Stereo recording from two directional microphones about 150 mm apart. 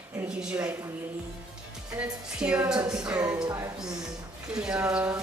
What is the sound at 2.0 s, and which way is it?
Speech, 5° right (ahead or behind).